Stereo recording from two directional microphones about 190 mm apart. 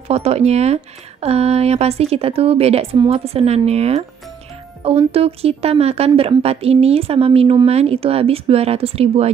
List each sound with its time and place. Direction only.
0.1 s speech: 35° right (ahead or behind)